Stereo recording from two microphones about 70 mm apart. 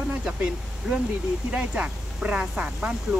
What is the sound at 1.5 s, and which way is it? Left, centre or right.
Speech, centre.